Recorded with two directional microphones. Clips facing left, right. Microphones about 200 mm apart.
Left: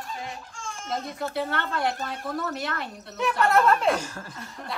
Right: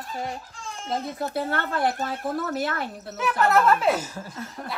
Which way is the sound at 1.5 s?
50° right (ahead or behind).